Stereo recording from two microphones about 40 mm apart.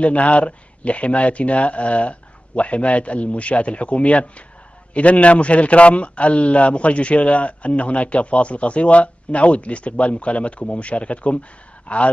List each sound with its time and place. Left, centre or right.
0.0 s speech: left